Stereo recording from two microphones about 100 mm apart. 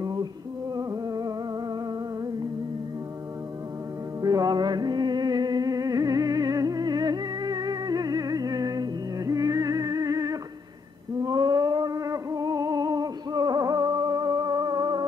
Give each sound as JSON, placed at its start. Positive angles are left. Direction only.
{"t": 0.0, "sound": "music", "side_deg": -40}
{"t": 4.2, "sound": "music", "side_deg": -40}
{"t": 11.1, "sound": "a sound", "side_deg": -45}